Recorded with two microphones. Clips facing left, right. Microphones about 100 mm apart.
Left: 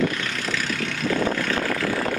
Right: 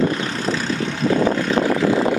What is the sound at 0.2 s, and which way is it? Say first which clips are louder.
Vehicle: right 5 dB; 30° right (ahead or behind).